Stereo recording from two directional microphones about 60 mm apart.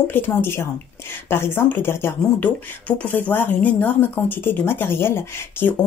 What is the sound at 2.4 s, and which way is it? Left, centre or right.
A woman's voice, left.